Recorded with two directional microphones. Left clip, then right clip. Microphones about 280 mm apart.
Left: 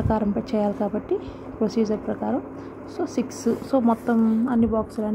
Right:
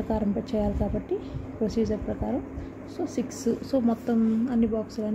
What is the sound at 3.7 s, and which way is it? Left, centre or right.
Speech, centre.